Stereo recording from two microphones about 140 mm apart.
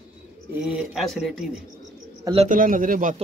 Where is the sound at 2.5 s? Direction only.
70° right (ahead or behind).